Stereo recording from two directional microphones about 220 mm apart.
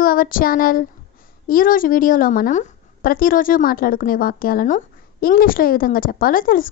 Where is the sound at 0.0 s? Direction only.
40° left (ahead or behind).